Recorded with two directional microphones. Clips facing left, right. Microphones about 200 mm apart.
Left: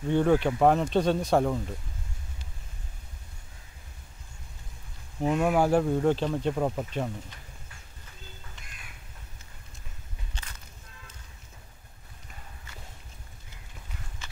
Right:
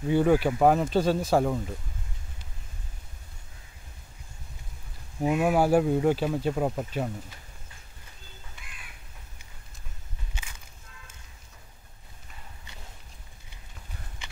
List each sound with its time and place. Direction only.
0.1 s speech: 5° right (ahead or behind)
5.2 s speech: 10° right (ahead or behind)
14.2 s horse: 15° right (ahead or behind)